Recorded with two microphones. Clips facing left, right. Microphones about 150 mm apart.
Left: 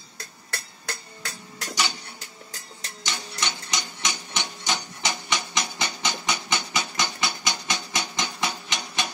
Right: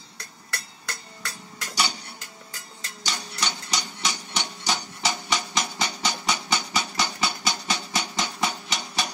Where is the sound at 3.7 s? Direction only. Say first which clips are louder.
Right 1 dB; 35° right (ahead or behind).